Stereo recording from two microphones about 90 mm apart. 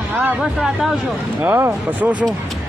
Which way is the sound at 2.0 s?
15° right (ahead or behind).